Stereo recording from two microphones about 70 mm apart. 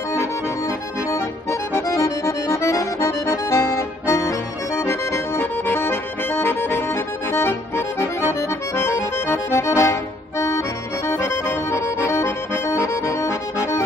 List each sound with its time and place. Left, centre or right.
0.1 s accordion: left
11.1 s accordion: left